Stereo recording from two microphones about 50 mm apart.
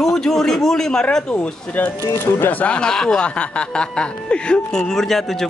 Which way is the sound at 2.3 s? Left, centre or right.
Left.